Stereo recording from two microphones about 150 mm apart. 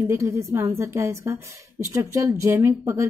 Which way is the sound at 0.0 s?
20° right (ahead or behind).